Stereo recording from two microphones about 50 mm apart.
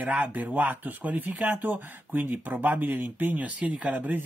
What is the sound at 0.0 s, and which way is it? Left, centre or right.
Speech, right.